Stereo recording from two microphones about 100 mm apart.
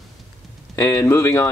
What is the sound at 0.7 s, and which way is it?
Speech, 25° left (ahead or behind).